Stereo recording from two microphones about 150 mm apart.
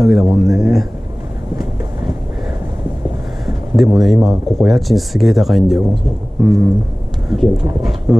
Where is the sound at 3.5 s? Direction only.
Centre (ahead or behind).